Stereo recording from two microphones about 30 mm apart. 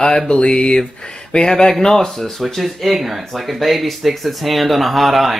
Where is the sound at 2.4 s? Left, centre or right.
Centre.